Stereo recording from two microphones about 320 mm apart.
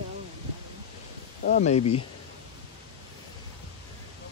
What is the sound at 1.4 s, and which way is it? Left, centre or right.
Speech, left.